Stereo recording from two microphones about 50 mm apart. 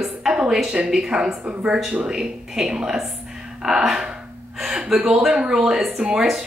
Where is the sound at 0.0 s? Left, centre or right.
Centre.